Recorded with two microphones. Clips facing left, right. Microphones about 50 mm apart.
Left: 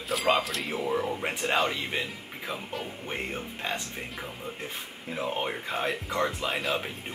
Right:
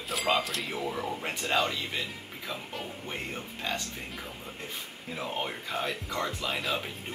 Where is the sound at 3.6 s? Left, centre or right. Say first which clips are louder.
Left 1 dB; left.